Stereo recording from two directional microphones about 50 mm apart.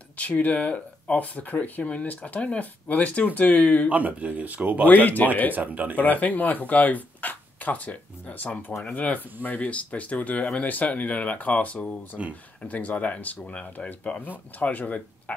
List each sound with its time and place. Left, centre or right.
0.2 s speech: left
3.9 s speech: right
4.8 s speech: left
5.5 s speech: right
5.9 s speech: left
12.2 s speech: right
12.6 s speech: left